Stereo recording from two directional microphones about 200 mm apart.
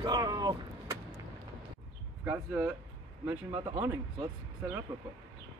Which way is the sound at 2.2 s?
10° right (ahead or behind).